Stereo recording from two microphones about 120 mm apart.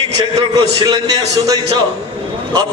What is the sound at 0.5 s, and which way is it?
Speech, 35° right (ahead or behind).